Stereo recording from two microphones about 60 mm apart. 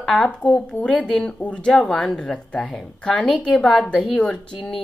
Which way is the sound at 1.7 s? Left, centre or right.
Centre.